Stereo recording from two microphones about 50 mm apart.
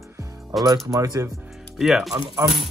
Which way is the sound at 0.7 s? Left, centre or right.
Right.